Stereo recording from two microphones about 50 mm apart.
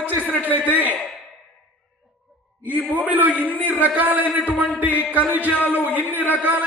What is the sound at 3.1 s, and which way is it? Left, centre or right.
A man's voice, right.